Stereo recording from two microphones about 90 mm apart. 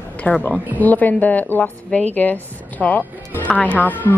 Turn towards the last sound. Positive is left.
turn(degrees=20)  # may be behind; listen again after turning